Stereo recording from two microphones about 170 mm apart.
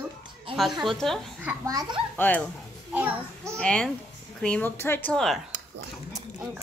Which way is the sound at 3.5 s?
5° left (ahead or behind).